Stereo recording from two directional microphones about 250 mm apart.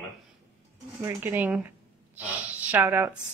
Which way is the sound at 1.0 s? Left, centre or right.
Centre.